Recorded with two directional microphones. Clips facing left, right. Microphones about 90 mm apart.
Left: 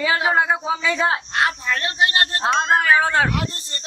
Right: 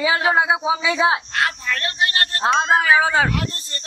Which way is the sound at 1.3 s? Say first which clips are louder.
Left 1 dB; 20° left (ahead or behind).